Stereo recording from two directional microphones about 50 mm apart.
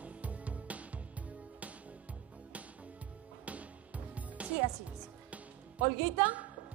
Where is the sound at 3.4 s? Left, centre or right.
Right.